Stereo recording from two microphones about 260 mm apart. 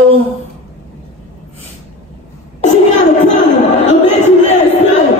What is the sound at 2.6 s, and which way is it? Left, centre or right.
Speech, left.